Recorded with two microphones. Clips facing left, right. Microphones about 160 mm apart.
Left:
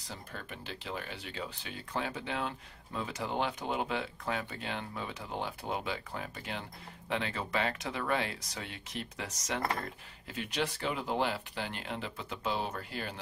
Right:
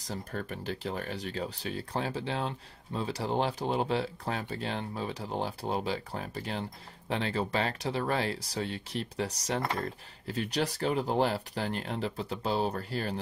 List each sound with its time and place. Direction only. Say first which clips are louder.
0.0 s speech: right 8 dB; 40° right (ahead or behind)